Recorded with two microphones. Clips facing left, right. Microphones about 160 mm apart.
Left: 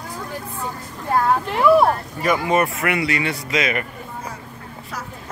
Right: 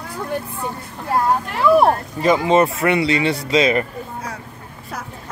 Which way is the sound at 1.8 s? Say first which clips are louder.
Right 2 dB; 25° right (ahead or behind).